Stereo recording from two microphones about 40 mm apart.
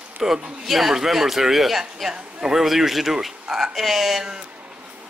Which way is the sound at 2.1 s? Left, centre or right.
Centre.